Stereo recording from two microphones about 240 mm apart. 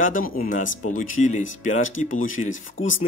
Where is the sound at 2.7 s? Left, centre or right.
Left.